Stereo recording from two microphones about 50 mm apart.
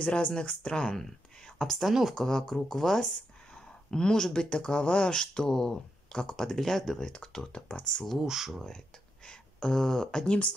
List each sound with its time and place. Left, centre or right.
0.0 s speech: left
1.6 s speech: centre
2.2 s speech: centre
8.2 s speech: centre
9.2 s speech: centre
10.2 s speech: left